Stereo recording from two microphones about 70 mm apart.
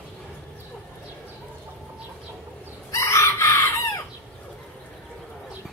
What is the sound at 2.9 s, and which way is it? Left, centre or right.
Chicken, left.